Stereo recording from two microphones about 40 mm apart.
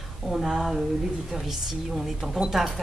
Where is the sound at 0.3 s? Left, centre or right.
Centre.